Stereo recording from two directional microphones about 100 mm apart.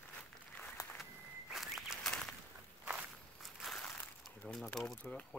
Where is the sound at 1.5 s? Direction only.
5° right (ahead or behind).